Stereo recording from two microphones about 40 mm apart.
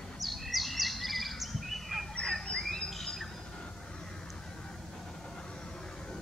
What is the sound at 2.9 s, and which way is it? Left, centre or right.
Squawk, centre.